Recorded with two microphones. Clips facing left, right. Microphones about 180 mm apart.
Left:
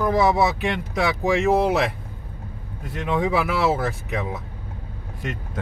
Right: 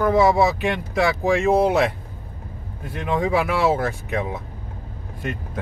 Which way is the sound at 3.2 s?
Centre (ahead or behind).